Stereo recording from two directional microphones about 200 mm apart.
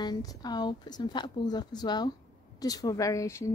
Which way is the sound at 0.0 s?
20° left (ahead or behind).